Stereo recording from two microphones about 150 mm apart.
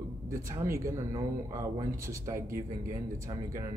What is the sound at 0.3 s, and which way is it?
Speech, 20° right (ahead or behind).